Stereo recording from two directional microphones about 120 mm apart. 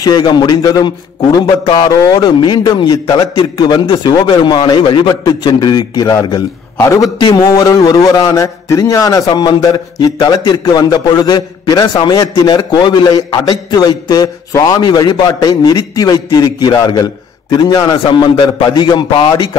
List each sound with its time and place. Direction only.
0.0 s a man's voice: 35° left (ahead or behind)